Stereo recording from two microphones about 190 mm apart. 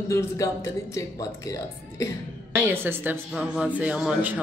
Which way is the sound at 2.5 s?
10° right (ahead or behind).